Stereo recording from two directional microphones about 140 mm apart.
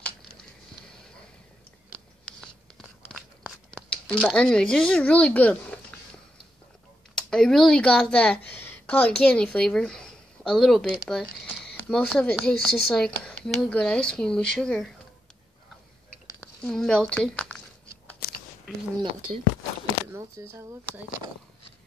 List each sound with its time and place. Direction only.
2.2 s tearing: 5° left (ahead or behind)
7.2 s speech: 5° left (ahead or behind)
16.3 s speech: 5° left (ahead or behind)
18.2 s a sound: 90° left
20.2 s speech: 20° right (ahead or behind)